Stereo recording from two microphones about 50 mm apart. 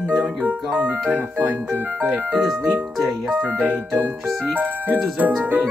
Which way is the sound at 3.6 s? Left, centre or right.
Right.